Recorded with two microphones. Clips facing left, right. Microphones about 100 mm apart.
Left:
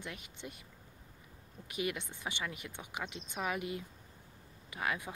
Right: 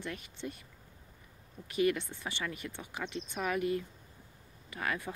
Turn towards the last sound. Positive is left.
turn(degrees=15)  # may be behind; listen again after turning